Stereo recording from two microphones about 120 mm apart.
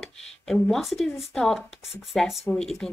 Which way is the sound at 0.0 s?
Centre (ahead or behind).